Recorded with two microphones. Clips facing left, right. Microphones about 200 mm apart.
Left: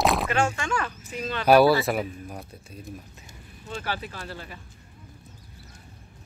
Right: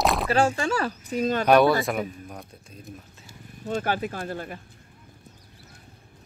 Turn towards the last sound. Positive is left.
turn(degrees=-50)  # may be behind; listen again after turning